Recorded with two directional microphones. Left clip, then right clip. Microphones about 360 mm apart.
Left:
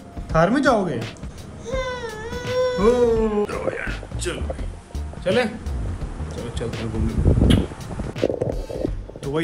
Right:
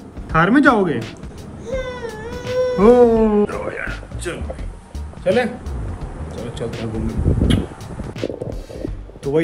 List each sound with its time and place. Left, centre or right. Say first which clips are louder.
0.4 s speech: right 4 dB; centre
1.7 s baby cry: right 1 dB; centre
5.2 s speech: right 3 dB; centre